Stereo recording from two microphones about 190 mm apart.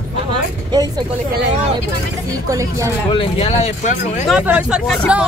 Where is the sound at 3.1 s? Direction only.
30° left (ahead or behind).